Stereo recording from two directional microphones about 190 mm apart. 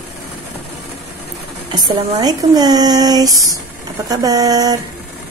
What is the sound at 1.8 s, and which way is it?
Speech, 20° right (ahead or behind).